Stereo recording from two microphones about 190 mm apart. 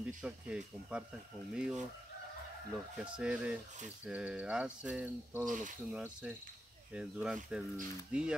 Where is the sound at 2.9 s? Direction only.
5° right (ahead or behind).